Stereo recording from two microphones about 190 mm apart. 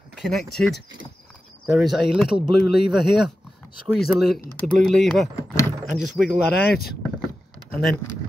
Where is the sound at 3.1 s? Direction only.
5° right (ahead or behind).